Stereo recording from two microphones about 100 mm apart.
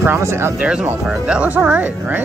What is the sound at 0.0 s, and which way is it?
Speech, 25° right (ahead or behind).